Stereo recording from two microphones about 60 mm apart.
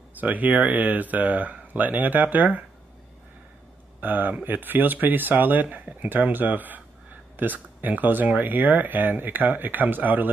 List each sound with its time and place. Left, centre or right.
0.2 s speech: right
4.0 s speech: right